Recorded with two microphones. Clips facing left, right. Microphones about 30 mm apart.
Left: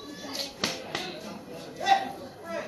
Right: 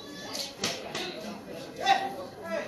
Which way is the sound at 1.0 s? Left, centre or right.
Centre.